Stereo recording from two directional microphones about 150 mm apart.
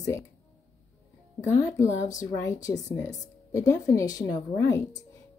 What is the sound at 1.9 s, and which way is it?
Speech, 50° left (ahead or behind).